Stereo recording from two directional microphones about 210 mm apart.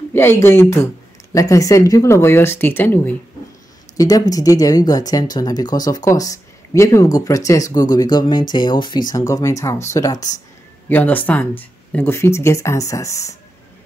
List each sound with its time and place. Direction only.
0.1 s speech: 10° left (ahead or behind)